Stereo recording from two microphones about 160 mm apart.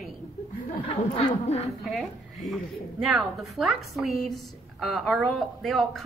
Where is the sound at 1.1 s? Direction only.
40° left (ahead or behind).